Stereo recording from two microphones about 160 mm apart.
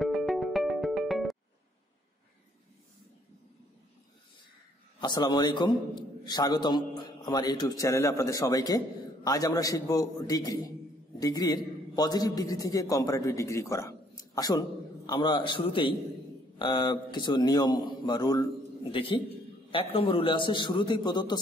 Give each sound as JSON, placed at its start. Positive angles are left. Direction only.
{"t": 0.0, "sound": "music", "side_deg": 0}
{"t": 5.0, "sound": "a man's voice", "side_deg": 25}